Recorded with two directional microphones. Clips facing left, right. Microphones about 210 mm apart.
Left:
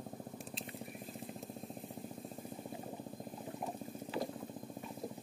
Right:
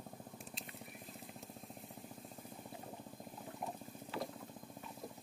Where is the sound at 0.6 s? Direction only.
30° left (ahead or behind).